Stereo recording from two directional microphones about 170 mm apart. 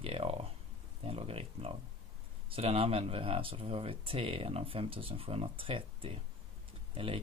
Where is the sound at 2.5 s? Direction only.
35° right (ahead or behind).